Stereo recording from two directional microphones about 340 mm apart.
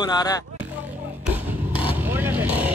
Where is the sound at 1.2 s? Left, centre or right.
Centre.